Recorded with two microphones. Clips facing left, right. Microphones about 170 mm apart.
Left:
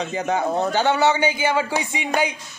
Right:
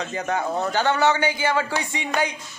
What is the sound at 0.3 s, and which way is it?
A man's voice, 20° left (ahead or behind).